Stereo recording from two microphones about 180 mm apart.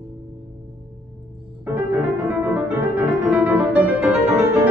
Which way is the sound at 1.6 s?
10° right (ahead or behind).